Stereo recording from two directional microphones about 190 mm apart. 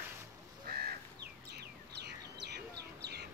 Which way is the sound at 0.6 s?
55° right (ahead or behind).